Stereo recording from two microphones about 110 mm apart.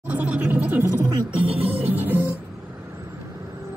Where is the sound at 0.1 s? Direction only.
15° right (ahead or behind).